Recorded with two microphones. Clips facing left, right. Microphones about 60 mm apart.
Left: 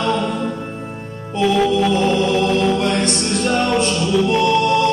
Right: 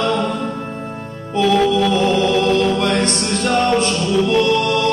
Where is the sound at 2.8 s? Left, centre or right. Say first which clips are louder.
Right 1 dB; right.